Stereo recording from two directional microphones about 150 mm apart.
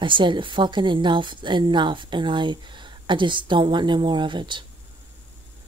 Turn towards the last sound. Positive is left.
turn(degrees=-30)  # may be behind; listen again after turning